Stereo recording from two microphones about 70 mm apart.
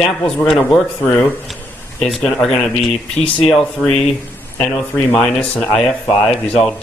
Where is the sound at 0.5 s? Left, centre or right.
Centre.